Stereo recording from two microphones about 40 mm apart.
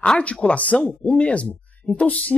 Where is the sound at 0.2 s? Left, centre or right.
Left.